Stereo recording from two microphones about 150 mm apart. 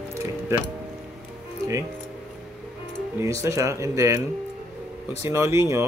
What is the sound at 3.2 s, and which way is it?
Speech, 20° right (ahead or behind).